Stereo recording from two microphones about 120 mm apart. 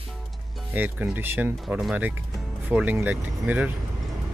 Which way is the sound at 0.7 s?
15° right (ahead or behind).